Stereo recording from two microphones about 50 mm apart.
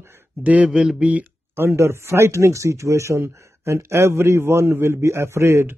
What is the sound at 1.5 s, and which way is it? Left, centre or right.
Speech, right.